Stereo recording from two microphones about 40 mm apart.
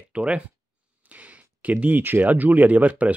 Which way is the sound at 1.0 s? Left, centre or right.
Right.